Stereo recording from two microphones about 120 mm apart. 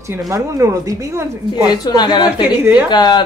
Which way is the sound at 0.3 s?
25° right (ahead or behind).